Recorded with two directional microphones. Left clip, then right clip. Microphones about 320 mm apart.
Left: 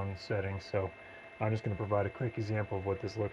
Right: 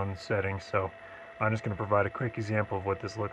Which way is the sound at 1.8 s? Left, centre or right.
Right.